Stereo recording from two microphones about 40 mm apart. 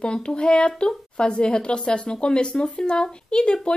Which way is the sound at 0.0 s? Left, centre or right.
Left.